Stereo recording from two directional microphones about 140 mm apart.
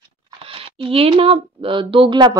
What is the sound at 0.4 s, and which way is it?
Speech, 40° right (ahead or behind).